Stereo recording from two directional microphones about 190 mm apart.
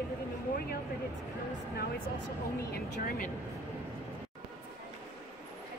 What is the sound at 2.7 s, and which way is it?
Speech, 50° left (ahead or behind).